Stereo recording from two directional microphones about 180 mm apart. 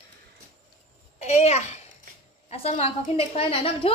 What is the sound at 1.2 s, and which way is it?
A woman's voice, 35° left (ahead or behind).